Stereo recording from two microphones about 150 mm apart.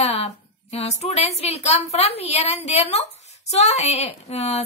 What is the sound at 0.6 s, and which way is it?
Speech, 45° left (ahead or behind).